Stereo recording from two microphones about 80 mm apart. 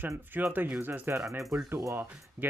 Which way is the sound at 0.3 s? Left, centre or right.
Right.